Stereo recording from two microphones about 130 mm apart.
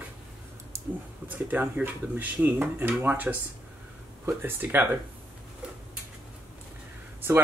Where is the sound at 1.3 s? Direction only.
15° right (ahead or behind).